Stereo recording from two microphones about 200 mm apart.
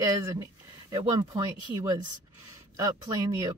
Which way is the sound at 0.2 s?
15° right (ahead or behind).